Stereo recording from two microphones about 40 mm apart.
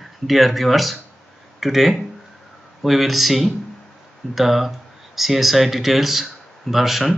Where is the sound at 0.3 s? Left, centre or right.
Centre.